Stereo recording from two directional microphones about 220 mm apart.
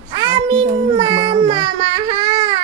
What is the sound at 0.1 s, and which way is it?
Child singing, 20° right (ahead or behind).